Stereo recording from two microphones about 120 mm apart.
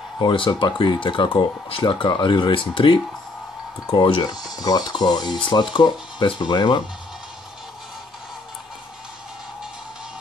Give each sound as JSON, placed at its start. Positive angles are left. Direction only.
{"t": 0.2, "sound": "speech", "side_deg": 40}